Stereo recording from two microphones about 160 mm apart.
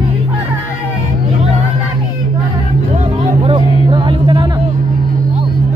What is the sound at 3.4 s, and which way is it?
Music, 30° right (ahead or behind).